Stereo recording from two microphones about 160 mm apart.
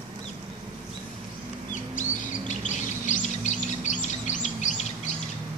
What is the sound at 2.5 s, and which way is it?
Bird, 50° left (ahead or behind).